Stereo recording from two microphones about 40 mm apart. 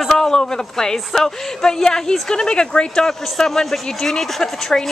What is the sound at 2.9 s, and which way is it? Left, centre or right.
A woman's voice, centre.